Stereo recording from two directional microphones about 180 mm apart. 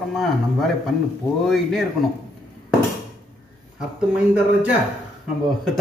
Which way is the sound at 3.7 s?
5° right (ahead or behind).